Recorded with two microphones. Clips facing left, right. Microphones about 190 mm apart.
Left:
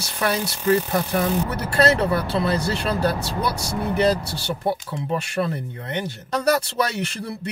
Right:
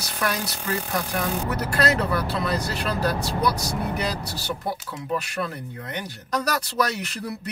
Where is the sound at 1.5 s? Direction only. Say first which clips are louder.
Left 2 dB; 25° left (ahead or behind).